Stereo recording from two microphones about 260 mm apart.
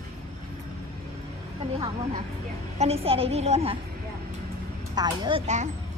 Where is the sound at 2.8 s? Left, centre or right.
Right.